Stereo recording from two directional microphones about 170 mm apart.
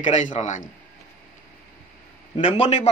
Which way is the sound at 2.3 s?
30° left (ahead or behind).